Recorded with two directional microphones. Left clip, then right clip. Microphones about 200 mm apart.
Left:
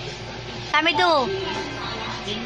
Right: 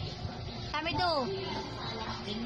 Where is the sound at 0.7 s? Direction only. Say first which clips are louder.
Left 13 dB; 25° left (ahead or behind).